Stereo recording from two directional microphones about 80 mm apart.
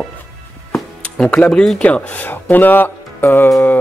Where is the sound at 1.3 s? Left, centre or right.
Centre.